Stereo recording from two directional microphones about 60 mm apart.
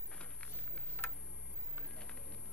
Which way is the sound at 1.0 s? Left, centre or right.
Left.